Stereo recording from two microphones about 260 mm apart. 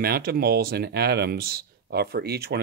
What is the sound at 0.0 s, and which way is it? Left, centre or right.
Speech, right.